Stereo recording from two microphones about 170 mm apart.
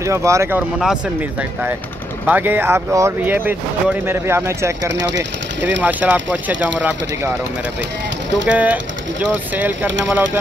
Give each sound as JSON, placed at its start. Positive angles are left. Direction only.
{"t": 0.0, "sound": "speech", "side_deg": -15}
{"t": 2.2, "sound": "speech", "side_deg": -10}
{"t": 4.9, "sound": "speech", "side_deg": -90}
{"t": 5.8, "sound": "speech", "side_deg": -10}
{"t": 8.5, "sound": "speech", "side_deg": -10}